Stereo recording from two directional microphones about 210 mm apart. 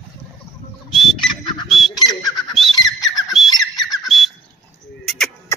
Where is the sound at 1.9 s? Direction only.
20° left (ahead or behind).